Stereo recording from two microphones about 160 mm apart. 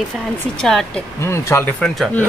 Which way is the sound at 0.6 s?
5° left (ahead or behind).